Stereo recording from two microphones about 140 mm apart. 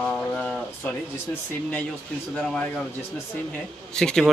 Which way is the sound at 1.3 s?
20° left (ahead or behind).